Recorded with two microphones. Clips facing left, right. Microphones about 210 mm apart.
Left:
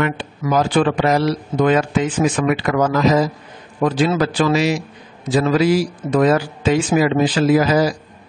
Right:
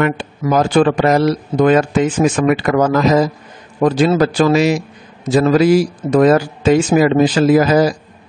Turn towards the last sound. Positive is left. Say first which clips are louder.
# right 3 dB
turn(degrees=-50)  # may be behind; listen again after turning